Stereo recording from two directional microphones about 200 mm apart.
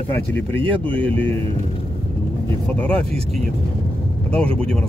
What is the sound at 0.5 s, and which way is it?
Speech, 25° right (ahead or behind).